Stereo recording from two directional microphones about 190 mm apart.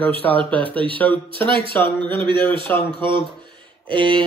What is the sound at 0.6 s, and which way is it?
Speech, 25° right (ahead or behind).